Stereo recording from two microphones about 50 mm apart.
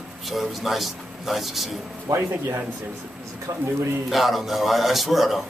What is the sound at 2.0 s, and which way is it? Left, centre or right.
Speech, right.